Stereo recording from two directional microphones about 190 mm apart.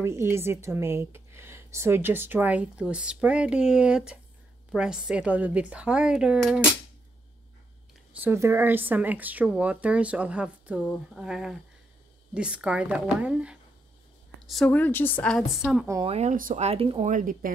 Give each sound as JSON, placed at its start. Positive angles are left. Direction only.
{"t": 0.0, "sound": "a woman's voice", "side_deg": -15}
{"t": 8.2, "sound": "a woman's voice", "side_deg": -15}
{"t": 14.5, "sound": "speech", "side_deg": 5}
{"t": 15.9, "sound": "speech", "side_deg": -30}
{"t": 17.1, "sound": "speech", "side_deg": -45}